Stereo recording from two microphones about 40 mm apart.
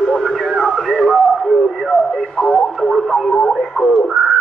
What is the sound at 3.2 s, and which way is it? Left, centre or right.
Radio, left.